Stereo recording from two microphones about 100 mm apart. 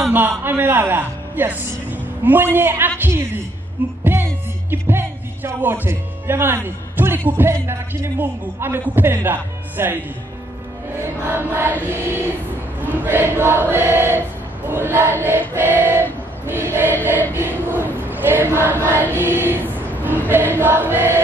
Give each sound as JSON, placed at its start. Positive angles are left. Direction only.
{"t": 0.1, "sound": "a man's voice", "side_deg": -20}
{"t": 4.0, "sound": "a man's voice", "side_deg": -20}
{"t": 11.0, "sound": "a man's voice", "side_deg": -20}
{"t": 17.4, "sound": "choir", "side_deg": -20}